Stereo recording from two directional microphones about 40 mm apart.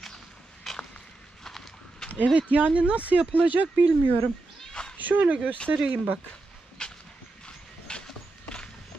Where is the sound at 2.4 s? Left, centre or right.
Right.